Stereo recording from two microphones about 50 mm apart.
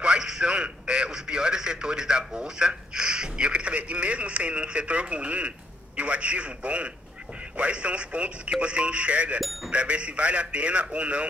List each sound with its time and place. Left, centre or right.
0.0 s a man's voice: centre
9.4 s speech: centre
9.7 s a man's voice: right